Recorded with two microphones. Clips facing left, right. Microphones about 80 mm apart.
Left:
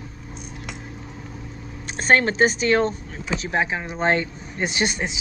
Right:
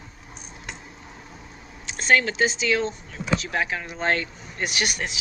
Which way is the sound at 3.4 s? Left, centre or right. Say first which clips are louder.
Left 3 dB; left.